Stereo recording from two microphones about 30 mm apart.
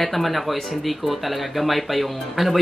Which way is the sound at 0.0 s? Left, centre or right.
Centre.